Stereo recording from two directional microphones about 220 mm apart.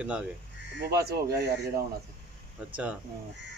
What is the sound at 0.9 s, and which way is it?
Speech, 45° right (ahead or behind).